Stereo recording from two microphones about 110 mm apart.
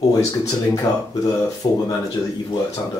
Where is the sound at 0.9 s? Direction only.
30° left (ahead or behind).